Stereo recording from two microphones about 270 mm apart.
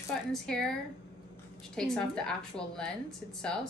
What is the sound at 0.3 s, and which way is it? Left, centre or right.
Speech, centre.